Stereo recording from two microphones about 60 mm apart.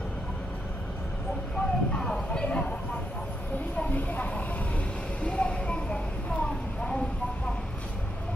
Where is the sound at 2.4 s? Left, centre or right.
Left.